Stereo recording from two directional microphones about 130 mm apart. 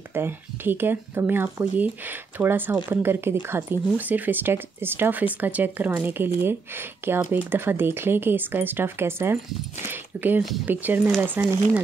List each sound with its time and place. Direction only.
0.1 s speech: 15° right (ahead or behind)